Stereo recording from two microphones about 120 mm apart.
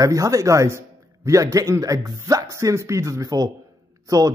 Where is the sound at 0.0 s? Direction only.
30° right (ahead or behind).